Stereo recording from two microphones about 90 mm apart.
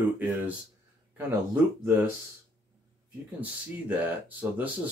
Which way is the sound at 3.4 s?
20° right (ahead or behind).